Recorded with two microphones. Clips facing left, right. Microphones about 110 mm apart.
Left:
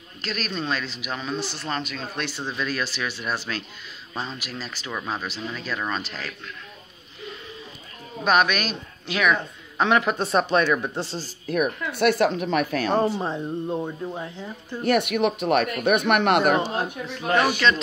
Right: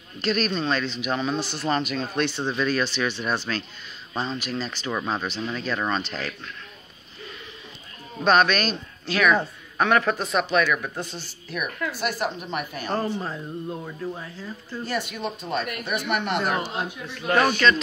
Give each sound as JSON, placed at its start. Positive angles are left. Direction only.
{"t": 0.2, "sound": "speech", "side_deg": 0}
{"t": 8.2, "sound": "speech", "side_deg": 10}
{"t": 10.1, "sound": "speech", "side_deg": 30}
{"t": 11.4, "sound": "speech", "side_deg": 45}
{"t": 11.9, "sound": "speech", "side_deg": 70}
{"t": 13.2, "sound": "speech", "side_deg": 25}
{"t": 14.9, "sound": "speech", "side_deg": 65}
{"t": 17.4, "sound": "speech", "side_deg": 10}